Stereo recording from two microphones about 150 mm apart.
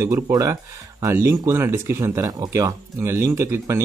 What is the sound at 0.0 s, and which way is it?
Speech, 20° right (ahead or behind).